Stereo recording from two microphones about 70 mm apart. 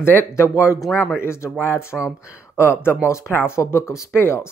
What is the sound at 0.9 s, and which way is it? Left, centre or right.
Speech, centre.